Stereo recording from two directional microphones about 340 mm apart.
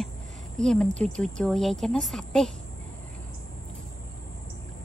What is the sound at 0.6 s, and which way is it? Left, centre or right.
Speech, centre.